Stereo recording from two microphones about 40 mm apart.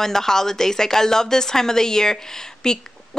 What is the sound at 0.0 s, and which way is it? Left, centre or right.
A woman's voice, centre.